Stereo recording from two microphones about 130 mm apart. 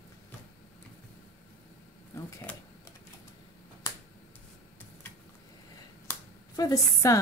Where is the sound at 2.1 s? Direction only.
20° left (ahead or behind).